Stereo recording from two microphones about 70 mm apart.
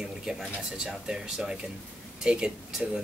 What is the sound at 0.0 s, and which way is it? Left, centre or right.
Speech, centre.